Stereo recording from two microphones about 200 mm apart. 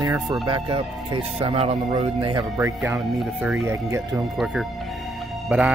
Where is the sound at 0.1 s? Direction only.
20° right (ahead or behind).